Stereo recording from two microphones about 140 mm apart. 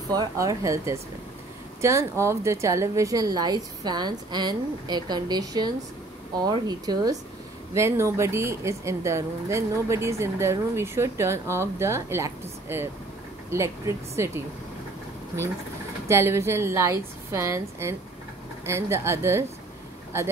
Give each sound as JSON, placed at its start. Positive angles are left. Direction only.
{"t": 0.1, "sound": "speech", "side_deg": -25}
{"t": 16.1, "sound": "speech", "side_deg": -20}